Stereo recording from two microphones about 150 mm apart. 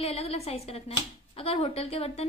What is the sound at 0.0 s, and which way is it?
Speech, 40° left (ahead or behind).